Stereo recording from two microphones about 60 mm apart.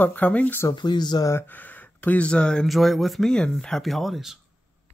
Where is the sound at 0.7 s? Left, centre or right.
Left.